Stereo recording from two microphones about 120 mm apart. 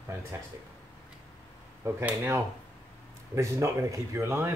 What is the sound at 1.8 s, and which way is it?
Speech, 25° right (ahead or behind).